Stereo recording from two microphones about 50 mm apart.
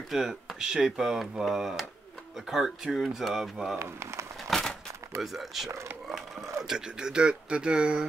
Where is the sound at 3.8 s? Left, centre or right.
Right.